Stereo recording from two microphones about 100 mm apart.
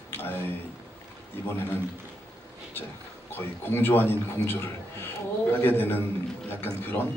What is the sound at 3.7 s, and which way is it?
Speech, 20° left (ahead or behind).